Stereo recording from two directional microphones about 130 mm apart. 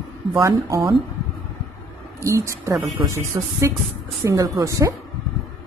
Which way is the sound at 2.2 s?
20° right (ahead or behind).